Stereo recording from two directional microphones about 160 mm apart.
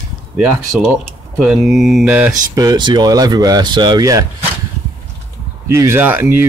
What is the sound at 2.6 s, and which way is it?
Speech, 25° right (ahead or behind).